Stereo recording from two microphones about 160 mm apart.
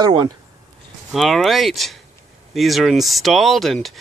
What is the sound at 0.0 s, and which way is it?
Speech, 25° right (ahead or behind).